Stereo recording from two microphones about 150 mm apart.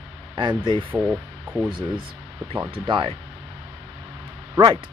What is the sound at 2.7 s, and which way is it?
Speech, 35° right (ahead or behind).